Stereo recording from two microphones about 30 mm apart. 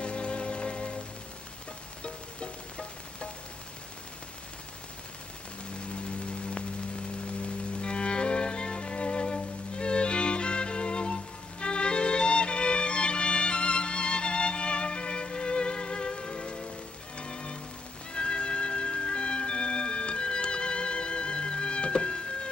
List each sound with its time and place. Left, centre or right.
0.0 s music: left
2.0 s music: left
5.9 s rain on surface: left
7.2 s music: left